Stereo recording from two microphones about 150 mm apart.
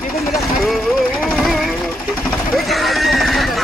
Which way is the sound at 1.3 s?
Centre (ahead or behind).